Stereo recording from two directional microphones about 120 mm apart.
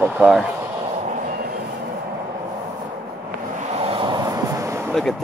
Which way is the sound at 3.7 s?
55° right (ahead or behind).